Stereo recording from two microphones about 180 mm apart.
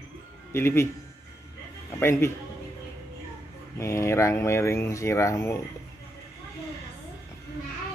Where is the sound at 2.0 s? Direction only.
15° left (ahead or behind).